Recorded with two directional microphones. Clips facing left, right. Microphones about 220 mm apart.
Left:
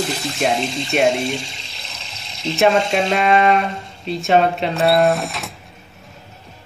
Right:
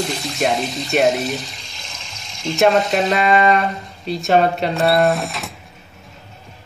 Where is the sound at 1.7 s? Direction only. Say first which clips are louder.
Even; 35° left (ahead or behind).